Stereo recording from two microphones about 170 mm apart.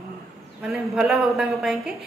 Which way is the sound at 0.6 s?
5° right (ahead or behind).